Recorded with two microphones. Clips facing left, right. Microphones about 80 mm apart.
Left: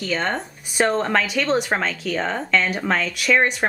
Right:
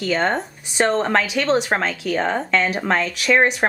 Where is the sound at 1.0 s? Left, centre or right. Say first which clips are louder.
Right 2 dB; centre.